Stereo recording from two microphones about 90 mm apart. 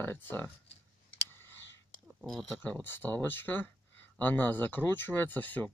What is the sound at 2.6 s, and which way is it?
Speech, 20° left (ahead or behind).